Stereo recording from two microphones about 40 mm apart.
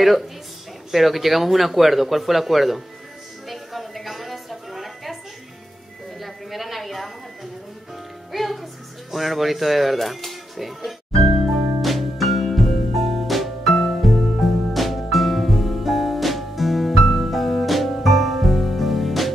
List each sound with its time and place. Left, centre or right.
0.9 s speech: centre
3.4 s a sound: centre
6.2 s a sound: centre
8.3 s music: centre
9.1 s speech: centre
11.3 s music: centre